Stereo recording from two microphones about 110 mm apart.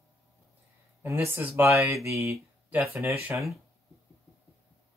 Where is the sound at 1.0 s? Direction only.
20° right (ahead or behind).